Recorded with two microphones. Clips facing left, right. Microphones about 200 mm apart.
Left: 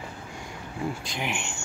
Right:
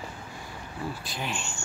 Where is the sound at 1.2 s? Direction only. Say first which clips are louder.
Left 1 dB; 15° left (ahead or behind).